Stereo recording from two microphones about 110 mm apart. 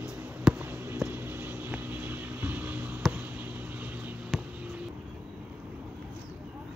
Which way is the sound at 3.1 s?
15° right (ahead or behind).